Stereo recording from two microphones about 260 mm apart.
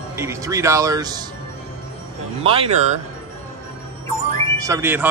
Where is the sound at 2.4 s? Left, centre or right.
Right.